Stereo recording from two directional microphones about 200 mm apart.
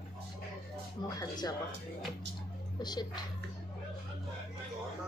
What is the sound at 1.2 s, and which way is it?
Speech, 20° left (ahead or behind).